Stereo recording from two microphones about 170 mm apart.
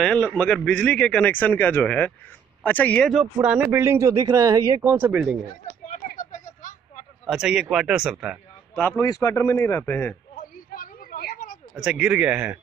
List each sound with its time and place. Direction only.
0.0 s speech: 5° left (ahead or behind)
3.4 s speech: 10° right (ahead or behind)
5.9 s a sound: 45° left (ahead or behind)
7.2 s a man's voice: 5° right (ahead or behind)
8.7 s speech: 10° left (ahead or behind)
10.5 s a sound: 55° left (ahead or behind)
11.7 s speech: 5° right (ahead or behind)